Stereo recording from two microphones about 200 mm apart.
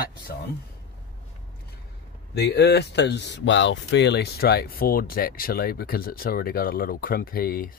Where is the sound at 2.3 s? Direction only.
55° left (ahead or behind).